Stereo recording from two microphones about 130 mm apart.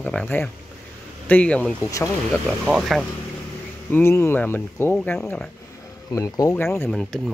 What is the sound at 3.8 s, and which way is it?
Speech, 15° left (ahead or behind).